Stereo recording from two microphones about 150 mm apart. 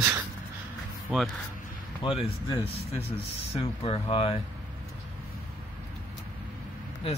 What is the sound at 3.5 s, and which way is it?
Speech, 40° left (ahead or behind).